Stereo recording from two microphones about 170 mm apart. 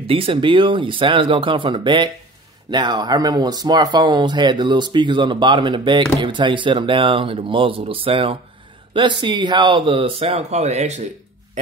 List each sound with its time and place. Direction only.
0.0 s speech: 35° right (ahead or behind)